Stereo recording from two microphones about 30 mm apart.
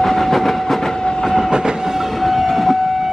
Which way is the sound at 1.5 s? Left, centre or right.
Right.